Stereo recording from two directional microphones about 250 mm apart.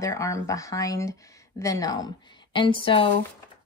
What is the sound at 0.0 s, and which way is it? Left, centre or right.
Speech, centre.